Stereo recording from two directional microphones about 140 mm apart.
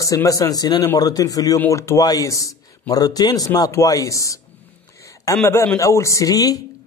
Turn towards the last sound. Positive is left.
turn(degrees=25)  # may be behind; listen again after turning